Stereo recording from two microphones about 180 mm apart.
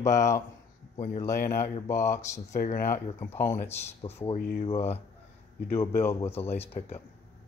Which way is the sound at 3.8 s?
35° left (ahead or behind).